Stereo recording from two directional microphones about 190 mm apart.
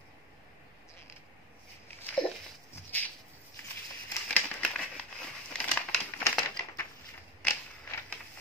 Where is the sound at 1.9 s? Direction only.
5° left (ahead or behind).